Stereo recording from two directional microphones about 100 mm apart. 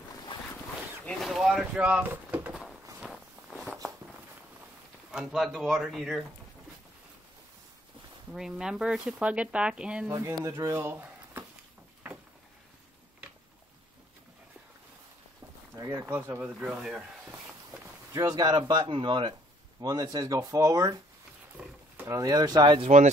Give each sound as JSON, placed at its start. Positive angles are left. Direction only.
{"t": 0.3, "sound": "boat", "side_deg": 55}
{"t": 1.2, "sound": "boat", "side_deg": 0}
{"t": 2.5, "sound": "walk", "side_deg": -5}
{"t": 5.1, "sound": "speech", "side_deg": -5}
{"t": 8.3, "sound": "speech", "side_deg": -5}
{"t": 10.3, "sound": "speech", "side_deg": -40}
{"t": 10.7, "sound": "a sound", "side_deg": -25}
{"t": 15.7, "sound": "speech", "side_deg": -35}
{"t": 16.4, "sound": "speech", "side_deg": -15}
{"t": 16.7, "sound": "speech", "side_deg": -5}
{"t": 18.1, "sound": "speech", "side_deg": -40}
{"t": 19.8, "sound": "speech", "side_deg": -40}
{"t": 21.6, "sound": "roaring cats", "side_deg": -10}
{"t": 22.0, "sound": "speech", "side_deg": -35}